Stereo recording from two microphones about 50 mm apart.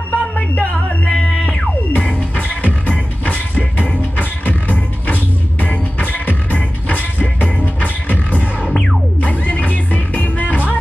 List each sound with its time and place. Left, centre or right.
0.1 s music: left